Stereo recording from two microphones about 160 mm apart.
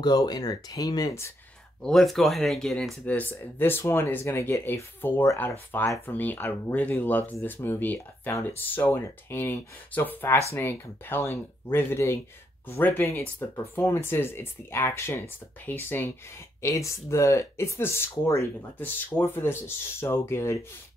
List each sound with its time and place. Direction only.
0.0 s speech: 25° left (ahead or behind)
1.8 s speech: 5° left (ahead or behind)